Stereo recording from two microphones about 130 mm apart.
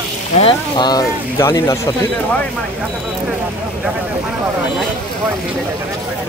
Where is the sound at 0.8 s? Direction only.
30° left (ahead or behind).